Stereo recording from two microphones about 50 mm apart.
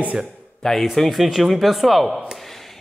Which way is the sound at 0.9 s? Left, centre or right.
Centre.